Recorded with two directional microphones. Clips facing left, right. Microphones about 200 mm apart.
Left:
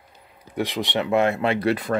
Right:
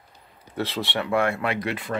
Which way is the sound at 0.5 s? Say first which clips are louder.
Left 3 dB; 15° left (ahead or behind).